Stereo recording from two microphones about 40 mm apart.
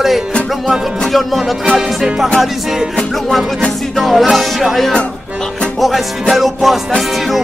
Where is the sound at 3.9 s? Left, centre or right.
Centre.